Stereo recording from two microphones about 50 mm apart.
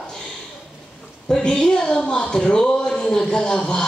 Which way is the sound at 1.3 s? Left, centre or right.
Centre.